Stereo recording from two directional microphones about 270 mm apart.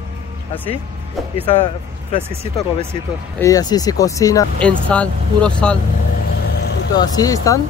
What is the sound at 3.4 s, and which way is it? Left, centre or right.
Speech, centre.